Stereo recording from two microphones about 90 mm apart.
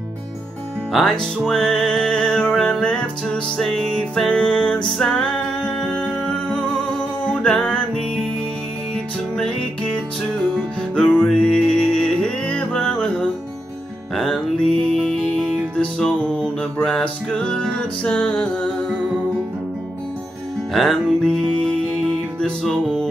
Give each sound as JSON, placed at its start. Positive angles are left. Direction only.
{"t": 1.2, "sound": "music", "side_deg": 5}
{"t": 15.7, "sound": "music", "side_deg": 10}
{"t": 20.7, "sound": "music", "side_deg": 0}